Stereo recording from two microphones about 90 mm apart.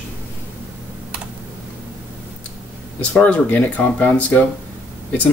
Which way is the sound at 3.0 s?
15° left (ahead or behind).